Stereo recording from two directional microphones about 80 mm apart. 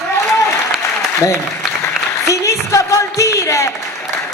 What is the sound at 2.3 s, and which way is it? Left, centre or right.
Speech, left.